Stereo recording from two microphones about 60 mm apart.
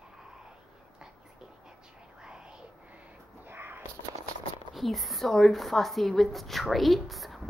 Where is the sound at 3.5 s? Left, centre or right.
Right.